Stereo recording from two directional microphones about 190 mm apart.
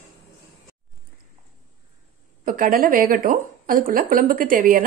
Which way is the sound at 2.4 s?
45° right (ahead or behind).